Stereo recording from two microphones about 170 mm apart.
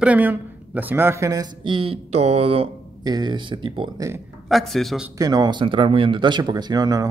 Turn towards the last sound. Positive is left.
turn(degrees=-20)  # may be behind; listen again after turning